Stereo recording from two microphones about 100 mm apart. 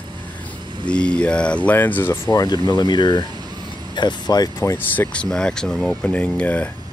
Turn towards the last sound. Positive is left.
turn(degrees=10)  # may be behind; listen again after turning